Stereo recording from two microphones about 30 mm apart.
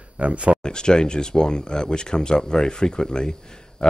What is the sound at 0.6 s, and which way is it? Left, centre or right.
Speech, left.